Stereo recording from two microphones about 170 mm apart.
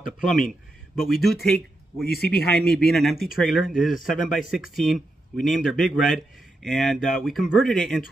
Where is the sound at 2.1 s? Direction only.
65° left (ahead or behind).